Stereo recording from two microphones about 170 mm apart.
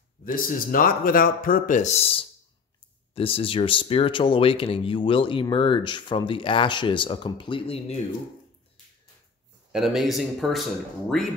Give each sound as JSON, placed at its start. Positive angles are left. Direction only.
{"t": 0.2, "sound": "speech", "side_deg": 55}
{"t": 9.7, "sound": "speech", "side_deg": 0}